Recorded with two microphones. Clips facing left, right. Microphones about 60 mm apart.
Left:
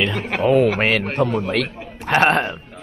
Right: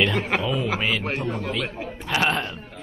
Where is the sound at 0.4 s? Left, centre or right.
Left.